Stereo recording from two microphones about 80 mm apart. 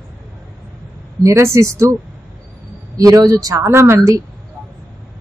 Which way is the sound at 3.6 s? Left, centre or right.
Right.